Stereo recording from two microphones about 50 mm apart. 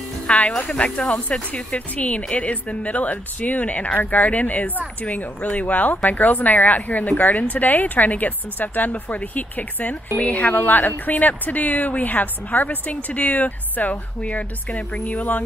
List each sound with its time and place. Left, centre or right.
0.6 s speech: left